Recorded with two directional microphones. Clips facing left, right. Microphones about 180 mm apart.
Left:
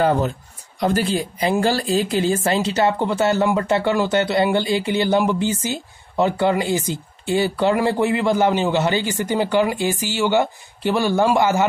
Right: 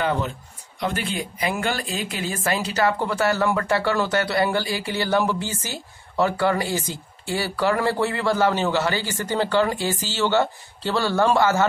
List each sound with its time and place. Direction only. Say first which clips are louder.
0.0 s speech: left 6 dB; 40° left (ahead or behind); by 11.6 s 15° left (ahead or behind)